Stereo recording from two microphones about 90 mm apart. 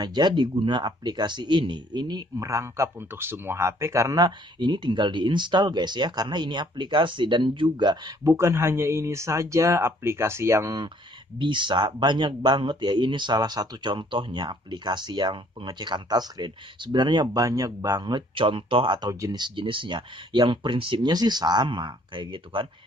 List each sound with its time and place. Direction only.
0.0 s speech: 55° right (ahead or behind)
2.3 s speech: 35° right (ahead or behind)
4.2 s speech: 60° right (ahead or behind)
8.2 s speech: 30° right (ahead or behind)
11.3 s speech: 65° right (ahead or behind)
17.4 s speech: 40° right (ahead or behind); by 21.1 s 75° right (ahead or behind)
21.1 s speech: 50° right (ahead or behind); by 22.7 s 65° right (ahead or behind)